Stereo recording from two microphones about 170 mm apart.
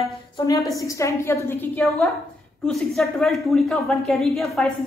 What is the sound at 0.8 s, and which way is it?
A woman's voice, 20° left (ahead or behind).